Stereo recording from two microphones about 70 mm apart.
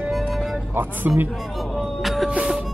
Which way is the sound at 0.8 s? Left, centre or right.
Right.